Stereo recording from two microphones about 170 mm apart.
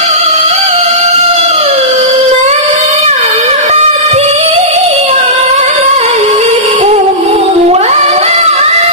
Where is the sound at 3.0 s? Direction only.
35° right (ahead or behind).